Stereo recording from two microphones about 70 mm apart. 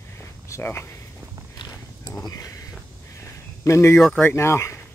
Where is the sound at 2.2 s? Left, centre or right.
Left.